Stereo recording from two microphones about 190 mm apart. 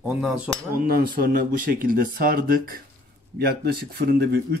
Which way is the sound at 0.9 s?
50° right (ahead or behind).